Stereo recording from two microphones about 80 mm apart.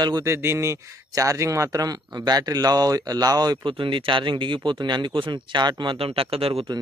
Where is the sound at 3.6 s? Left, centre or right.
Right.